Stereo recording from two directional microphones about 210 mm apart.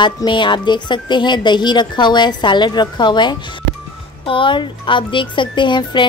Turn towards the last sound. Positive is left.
turn(degrees=20)  # may be behind; listen again after turning